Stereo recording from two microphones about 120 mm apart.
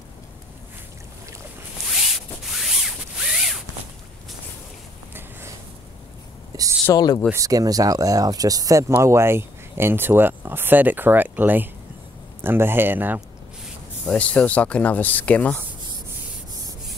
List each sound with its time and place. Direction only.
1.9 s zipper: centre (ahead or behind)
6.5 s a sound: 30° right (ahead or behind)
6.9 s speech: 35° left (ahead or behind)
7.3 s speech: 30° right (ahead or behind)
14.1 s speech: 10° left (ahead or behind)